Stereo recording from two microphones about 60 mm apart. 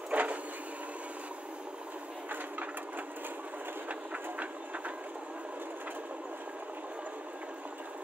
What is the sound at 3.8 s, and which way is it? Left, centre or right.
Train, right.